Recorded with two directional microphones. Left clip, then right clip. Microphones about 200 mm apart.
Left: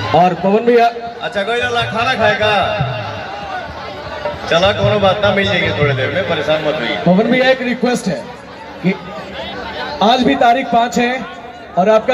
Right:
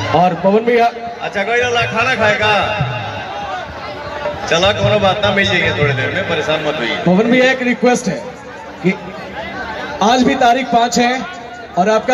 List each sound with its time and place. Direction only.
0.1 s a man's voice: 40° left (ahead or behind)
4.5 s a man's voice: 30° left (ahead or behind)
9.9 s a man's voice: 30° left (ahead or behind)